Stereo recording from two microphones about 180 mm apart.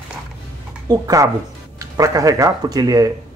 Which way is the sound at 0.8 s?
20° right (ahead or behind).